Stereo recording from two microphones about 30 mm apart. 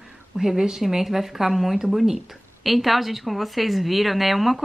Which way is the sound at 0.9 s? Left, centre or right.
Centre.